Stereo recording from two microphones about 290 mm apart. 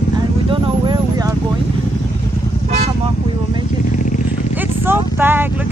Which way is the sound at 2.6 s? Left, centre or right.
Right.